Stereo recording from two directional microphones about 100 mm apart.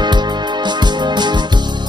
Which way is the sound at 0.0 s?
50° right (ahead or behind).